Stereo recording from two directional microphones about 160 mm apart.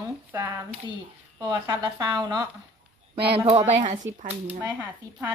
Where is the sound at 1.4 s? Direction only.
25° right (ahead or behind).